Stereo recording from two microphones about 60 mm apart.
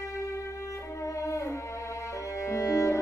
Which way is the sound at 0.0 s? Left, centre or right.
Left.